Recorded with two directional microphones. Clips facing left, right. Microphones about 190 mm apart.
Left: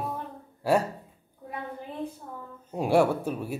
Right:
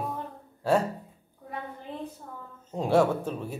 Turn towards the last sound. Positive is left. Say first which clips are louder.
# left 1 dB
turn(degrees=10)  # may be behind; listen again after turning